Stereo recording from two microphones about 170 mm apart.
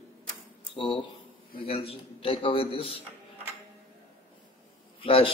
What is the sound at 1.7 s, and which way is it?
A man's voice, 35° left (ahead or behind).